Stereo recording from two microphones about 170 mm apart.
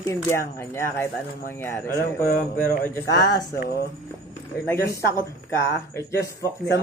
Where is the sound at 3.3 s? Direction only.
25° left (ahead or behind).